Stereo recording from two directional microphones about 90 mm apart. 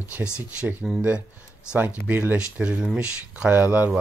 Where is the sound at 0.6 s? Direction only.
20° right (ahead or behind).